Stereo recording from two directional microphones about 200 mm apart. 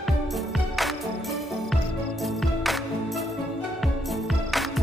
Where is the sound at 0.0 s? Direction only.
Centre (ahead or behind).